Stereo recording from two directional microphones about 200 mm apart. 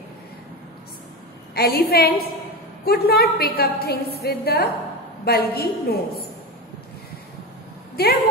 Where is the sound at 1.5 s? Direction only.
50° left (ahead or behind).